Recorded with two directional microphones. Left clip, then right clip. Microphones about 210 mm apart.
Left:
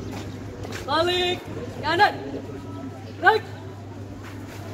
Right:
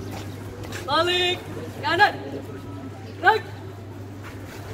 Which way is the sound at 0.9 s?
45° left (ahead or behind).